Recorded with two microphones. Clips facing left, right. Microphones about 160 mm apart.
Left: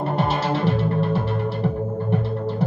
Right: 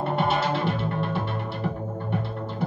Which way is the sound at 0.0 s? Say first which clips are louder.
Left 2 dB; 40° left (ahead or behind).